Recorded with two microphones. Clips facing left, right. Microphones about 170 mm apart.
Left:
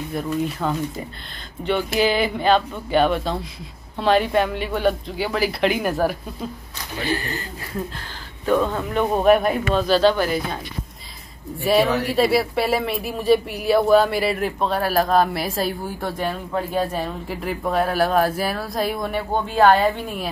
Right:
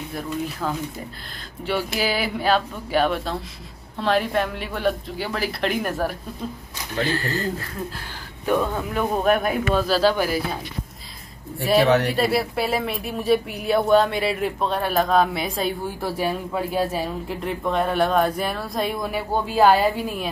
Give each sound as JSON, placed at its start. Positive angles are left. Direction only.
{"t": 0.1, "sound": "speech", "side_deg": 0}
{"t": 7.1, "sound": "speech", "side_deg": 20}
{"t": 8.5, "sound": "speech", "side_deg": -10}
{"t": 11.6, "sound": "speech", "side_deg": 0}